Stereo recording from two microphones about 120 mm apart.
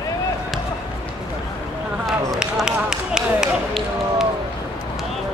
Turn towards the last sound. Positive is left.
turn(degrees=-5)  # may be behind; listen again after turning